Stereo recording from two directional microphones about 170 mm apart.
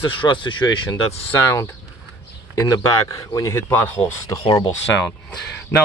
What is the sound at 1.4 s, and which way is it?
Speech, 15° left (ahead or behind).